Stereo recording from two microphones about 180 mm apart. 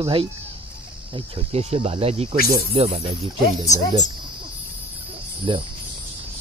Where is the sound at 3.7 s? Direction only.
40° left (ahead or behind).